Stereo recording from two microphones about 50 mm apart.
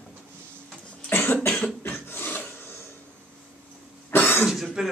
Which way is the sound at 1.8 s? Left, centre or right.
Left.